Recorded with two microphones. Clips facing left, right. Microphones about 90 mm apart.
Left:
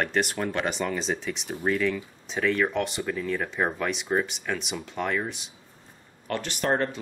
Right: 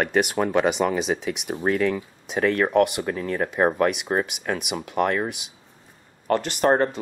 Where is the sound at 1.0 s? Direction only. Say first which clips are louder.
Right 5 dB; 65° right (ahead or behind).